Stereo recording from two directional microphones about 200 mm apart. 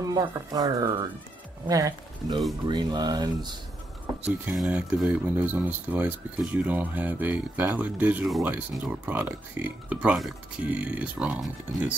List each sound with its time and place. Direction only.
0.0 s speech: 20° right (ahead or behind)
4.5 s speech: 5° right (ahead or behind)